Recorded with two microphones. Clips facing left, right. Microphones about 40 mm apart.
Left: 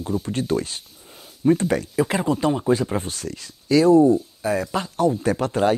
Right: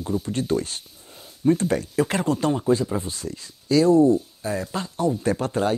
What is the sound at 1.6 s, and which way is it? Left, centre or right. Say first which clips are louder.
Speech: left 1 dB; left.